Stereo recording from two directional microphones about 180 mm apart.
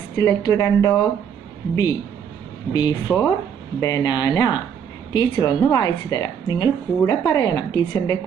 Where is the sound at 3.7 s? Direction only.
20° left (ahead or behind).